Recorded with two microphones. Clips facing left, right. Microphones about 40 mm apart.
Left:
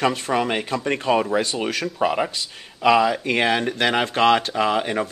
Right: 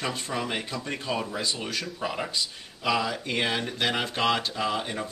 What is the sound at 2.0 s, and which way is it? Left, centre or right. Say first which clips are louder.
Speech: left 9 dB; left.